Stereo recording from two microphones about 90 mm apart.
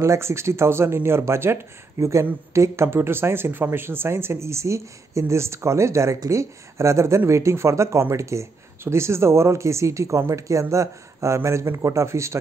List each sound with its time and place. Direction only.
0.0 s speech: 30° right (ahead or behind)